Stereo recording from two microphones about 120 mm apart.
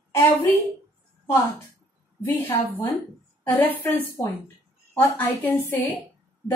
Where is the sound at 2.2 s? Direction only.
15° left (ahead or behind).